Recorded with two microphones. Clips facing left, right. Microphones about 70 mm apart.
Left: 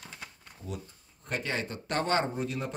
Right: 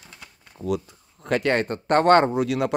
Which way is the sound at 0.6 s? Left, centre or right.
Right.